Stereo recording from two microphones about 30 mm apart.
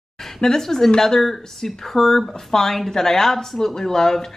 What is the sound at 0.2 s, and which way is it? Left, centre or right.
A woman's voice, centre.